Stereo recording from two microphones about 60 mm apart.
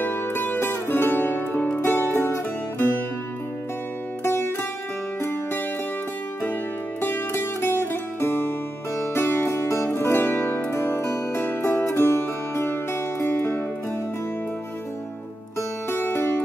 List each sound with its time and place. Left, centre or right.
0.0 s music: left
1.8 s music: left
4.2 s music: left
7.0 s music: left
9.5 s music: left
15.9 s music: left